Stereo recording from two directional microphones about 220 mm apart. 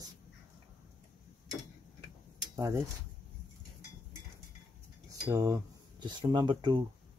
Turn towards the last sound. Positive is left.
turn(degrees=-20)  # may be behind; listen again after turning